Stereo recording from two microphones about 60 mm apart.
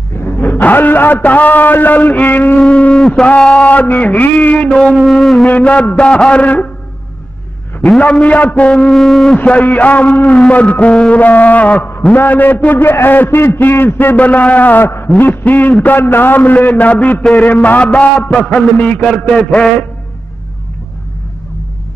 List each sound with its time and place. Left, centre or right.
0.2 s a man's voice: left
2.6 s a sound: centre
3.3 s a man's voice: centre
4.6 s a sound: centre
4.9 s music: centre
5.6 s a man's voice: left
8.0 s a man's voice: left
9.4 s a man's voice: left
14.1 s a man's voice: left
19.0 s a sound: centre